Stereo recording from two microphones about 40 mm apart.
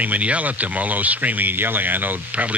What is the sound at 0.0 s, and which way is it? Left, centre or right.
Speech, right.